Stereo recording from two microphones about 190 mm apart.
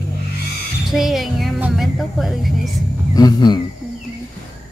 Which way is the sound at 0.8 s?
Centre (ahead or behind).